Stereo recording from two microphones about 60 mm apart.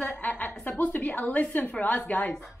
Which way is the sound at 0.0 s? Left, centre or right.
Left.